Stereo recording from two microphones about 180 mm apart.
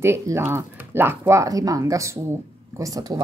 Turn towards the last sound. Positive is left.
turn(degrees=-20)  # may be behind; listen again after turning